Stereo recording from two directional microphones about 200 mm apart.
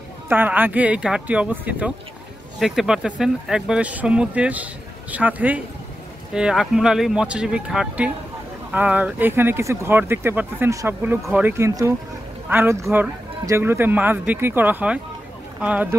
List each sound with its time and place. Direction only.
0.3 s speech: 10° right (ahead or behind)